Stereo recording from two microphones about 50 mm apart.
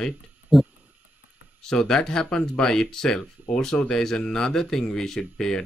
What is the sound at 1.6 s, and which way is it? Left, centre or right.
Speech, centre.